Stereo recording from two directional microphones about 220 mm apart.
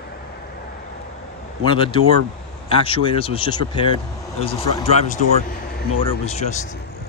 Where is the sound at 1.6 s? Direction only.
20° left (ahead or behind).